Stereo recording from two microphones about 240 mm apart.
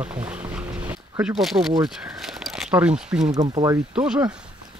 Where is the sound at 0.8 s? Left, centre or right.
Centre.